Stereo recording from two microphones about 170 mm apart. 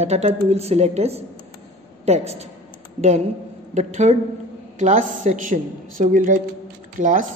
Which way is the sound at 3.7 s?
45° right (ahead or behind).